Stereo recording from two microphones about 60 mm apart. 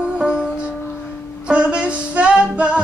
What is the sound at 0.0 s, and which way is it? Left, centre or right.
Music, centre.